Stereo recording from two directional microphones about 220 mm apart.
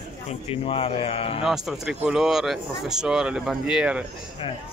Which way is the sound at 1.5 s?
5° right (ahead or behind).